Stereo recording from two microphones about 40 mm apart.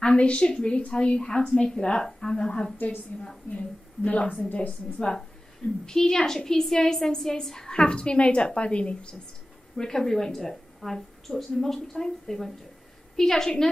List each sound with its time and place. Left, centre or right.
0.0 s a woman's voice: left
2.3 s a woman's voice: left
3.1 s a woman's voice: left
4.6 s a woman's voice: left
5.9 s a woman's voice: centre
9.8 s speech: centre